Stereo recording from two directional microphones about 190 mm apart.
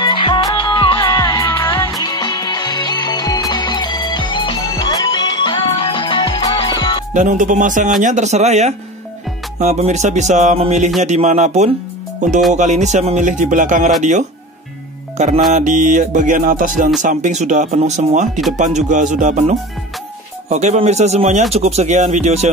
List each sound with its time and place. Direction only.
0.0 s music: 25° left (ahead or behind)
7.2 s speech: 40° right (ahead or behind)
15.1 s speech: 40° right (ahead or behind)
15.5 s music: 40° right (ahead or behind)
17.0 s speech: 40° right (ahead or behind)